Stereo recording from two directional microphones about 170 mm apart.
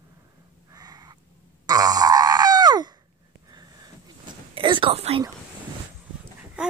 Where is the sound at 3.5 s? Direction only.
25° right (ahead or behind).